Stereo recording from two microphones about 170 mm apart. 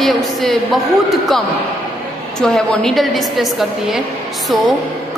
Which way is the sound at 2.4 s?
5° left (ahead or behind).